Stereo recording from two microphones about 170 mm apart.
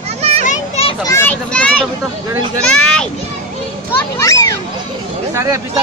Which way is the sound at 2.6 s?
5° left (ahead or behind).